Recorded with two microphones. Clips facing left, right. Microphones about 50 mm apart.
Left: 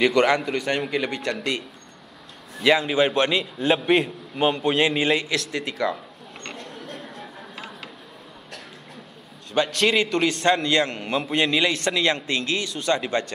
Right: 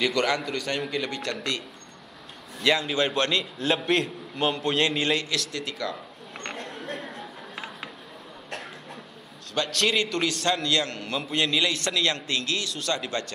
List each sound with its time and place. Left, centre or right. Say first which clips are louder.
0.0 s a man's voice: left 6 dB; centre
2.6 s a man's voice: left 5 dB; centre
6.7 s a sound: right 2 dB; centre
9.7 s a man's voice: left 2 dB; centre
10.6 s a man's voice: left 4 dB; left